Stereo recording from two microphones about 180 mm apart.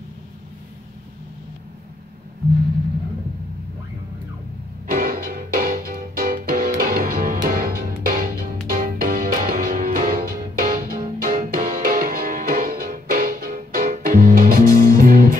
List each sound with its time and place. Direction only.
4.8 s music: 50° right (ahead or behind)